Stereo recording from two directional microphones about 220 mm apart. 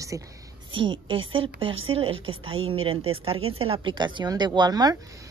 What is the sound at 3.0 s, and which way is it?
Speech, 70° right (ahead or behind).